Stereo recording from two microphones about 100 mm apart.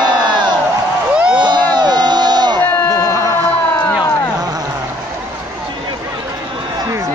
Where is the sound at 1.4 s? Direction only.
45° right (ahead or behind).